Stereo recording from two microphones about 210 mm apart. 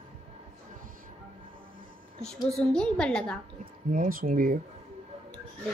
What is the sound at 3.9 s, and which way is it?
Speech, 40° right (ahead or behind).